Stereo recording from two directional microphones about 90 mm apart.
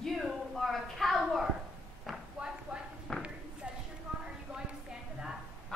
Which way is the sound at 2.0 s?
10° right (ahead or behind).